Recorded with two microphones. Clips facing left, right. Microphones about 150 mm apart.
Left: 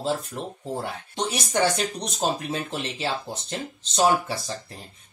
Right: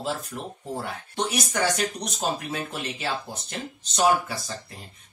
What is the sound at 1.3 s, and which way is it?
Speech, 25° left (ahead or behind).